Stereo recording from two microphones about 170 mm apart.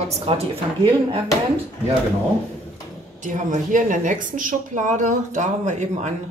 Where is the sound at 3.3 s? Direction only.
50° right (ahead or behind).